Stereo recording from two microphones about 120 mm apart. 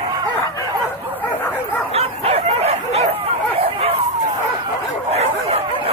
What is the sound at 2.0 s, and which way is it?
Dog, 60° right (ahead or behind).